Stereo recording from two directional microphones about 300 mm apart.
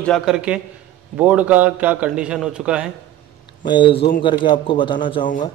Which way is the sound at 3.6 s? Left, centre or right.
Centre.